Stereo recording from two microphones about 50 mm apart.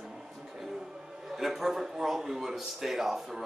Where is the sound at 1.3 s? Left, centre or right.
Centre.